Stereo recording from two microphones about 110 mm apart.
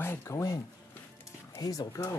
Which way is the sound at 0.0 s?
25° left (ahead or behind).